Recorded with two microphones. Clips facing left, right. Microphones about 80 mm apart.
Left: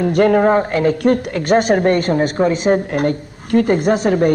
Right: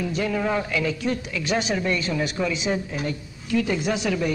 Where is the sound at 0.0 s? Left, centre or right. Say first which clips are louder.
Left 12 dB; left.